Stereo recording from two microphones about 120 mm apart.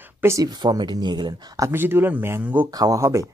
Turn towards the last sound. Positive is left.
turn(degrees=-25)  # may be behind; listen again after turning